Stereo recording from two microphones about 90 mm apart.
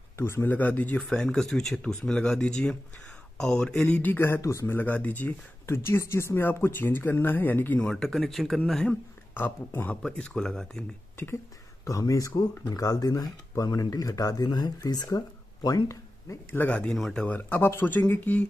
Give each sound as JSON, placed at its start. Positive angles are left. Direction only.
{"t": 0.2, "sound": "speech", "side_deg": 25}
{"t": 4.0, "sound": "speech", "side_deg": 20}
{"t": 4.4, "sound": "speech", "side_deg": 35}
{"t": 5.7, "sound": "speech", "side_deg": 30}
{"t": 7.9, "sound": "speech", "side_deg": 5}
{"t": 8.8, "sound": "speech", "side_deg": 20}
{"t": 10.0, "sound": "speech", "side_deg": 10}
{"t": 11.8, "sound": "speech", "side_deg": 40}
{"t": 16.5, "sound": "speech", "side_deg": 15}